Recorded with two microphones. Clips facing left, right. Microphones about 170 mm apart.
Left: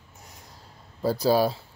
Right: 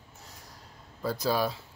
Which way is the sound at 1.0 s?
35° left (ahead or behind).